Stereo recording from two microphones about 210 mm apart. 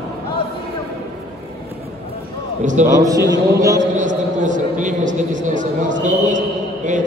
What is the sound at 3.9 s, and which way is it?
A man's voice, 35° right (ahead or behind).